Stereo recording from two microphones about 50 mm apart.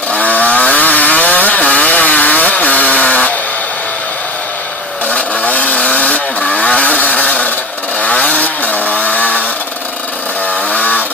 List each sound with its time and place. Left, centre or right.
0.1 s chainsaw: left
5.1 s vehicle: left
8.0 s chainsaw: left
10.7 s chainsaw: left